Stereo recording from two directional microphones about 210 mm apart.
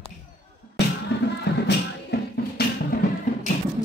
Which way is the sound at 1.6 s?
50° left (ahead or behind).